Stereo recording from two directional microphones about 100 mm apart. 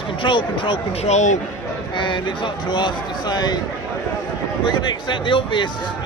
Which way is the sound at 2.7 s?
45° left (ahead or behind).